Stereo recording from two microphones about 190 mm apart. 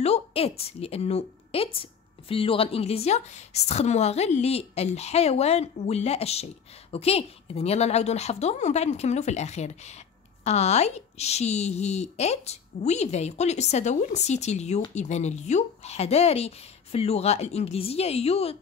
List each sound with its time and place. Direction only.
0.0 s a woman's voice: 30° left (ahead or behind)